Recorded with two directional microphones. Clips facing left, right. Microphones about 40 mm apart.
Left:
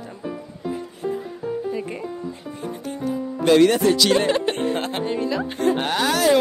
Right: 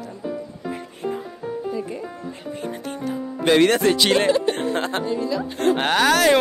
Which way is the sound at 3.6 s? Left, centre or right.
Right.